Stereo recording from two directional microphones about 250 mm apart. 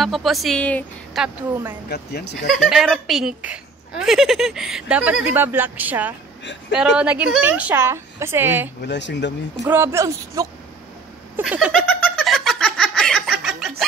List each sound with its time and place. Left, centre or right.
0.0 s a woman's voice: centre
1.9 s speech: left
2.5 s a woman's voice: centre
8.8 s speech: left
9.6 s a woman's voice: centre
11.8 s giggle: centre